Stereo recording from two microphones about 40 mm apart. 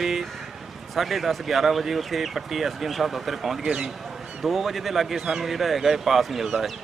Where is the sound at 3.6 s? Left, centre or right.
Right.